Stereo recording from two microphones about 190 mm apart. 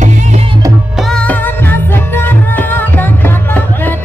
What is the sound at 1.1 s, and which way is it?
Music, 10° left (ahead or behind).